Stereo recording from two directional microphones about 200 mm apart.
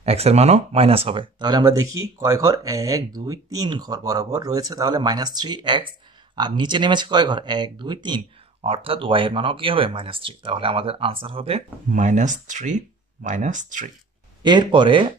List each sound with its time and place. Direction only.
0.0 s speech: 30° right (ahead or behind)
14.4 s speech: 25° right (ahead or behind)